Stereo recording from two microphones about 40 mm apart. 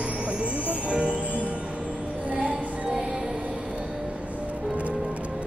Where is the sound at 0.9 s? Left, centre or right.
Right.